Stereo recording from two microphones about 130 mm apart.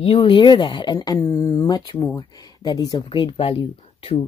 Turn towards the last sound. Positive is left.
turn(degrees=45)  # may be behind; listen again after turning